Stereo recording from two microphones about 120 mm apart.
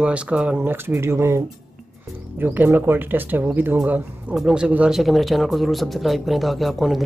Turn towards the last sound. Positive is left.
turn(degrees=0)  # may be behind; listen again after turning